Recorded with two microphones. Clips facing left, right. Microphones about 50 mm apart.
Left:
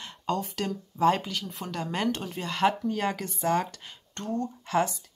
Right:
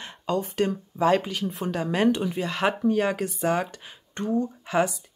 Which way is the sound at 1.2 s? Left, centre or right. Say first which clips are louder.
Right 6 dB; centre.